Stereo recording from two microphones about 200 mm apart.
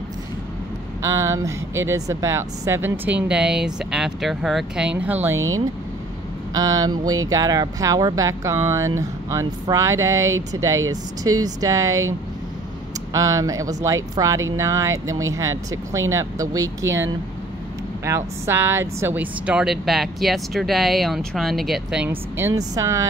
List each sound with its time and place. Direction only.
1.0 s speech: 15° right (ahead or behind)
6.5 s speech: 20° right (ahead or behind)
13.1 s speech: 15° right (ahead or behind)
22.6 s speech: 15° right (ahead or behind)